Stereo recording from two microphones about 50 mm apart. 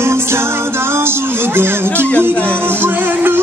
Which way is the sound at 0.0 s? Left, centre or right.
Right.